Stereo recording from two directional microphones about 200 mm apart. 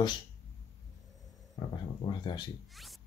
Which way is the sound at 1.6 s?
20° left (ahead or behind).